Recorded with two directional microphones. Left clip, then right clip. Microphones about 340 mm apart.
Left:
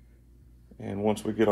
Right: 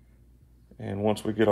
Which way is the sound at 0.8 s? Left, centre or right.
Right.